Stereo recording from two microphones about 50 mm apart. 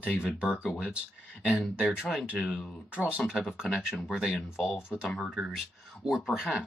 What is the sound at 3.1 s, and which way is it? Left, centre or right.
Speech, centre.